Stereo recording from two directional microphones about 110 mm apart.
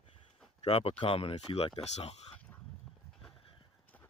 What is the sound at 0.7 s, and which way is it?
Speech, 60° left (ahead or behind).